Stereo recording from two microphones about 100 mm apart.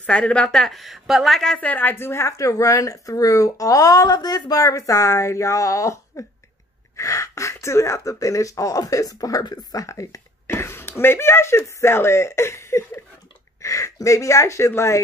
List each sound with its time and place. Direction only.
0.0 s a woman's voice: 10° left (ahead or behind)